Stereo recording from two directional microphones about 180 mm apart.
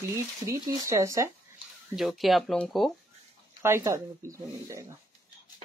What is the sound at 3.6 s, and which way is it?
Speech, 15° right (ahead or behind).